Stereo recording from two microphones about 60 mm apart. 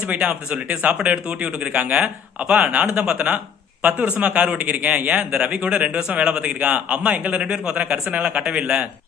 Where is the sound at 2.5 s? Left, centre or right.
Centre.